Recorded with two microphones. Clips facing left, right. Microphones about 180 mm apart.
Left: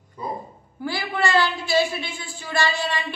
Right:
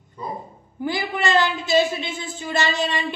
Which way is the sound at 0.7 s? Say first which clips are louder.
Right 1 dB; 20° right (ahead or behind).